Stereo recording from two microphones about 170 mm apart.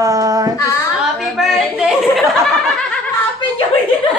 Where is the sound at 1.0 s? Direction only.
Centre (ahead or behind).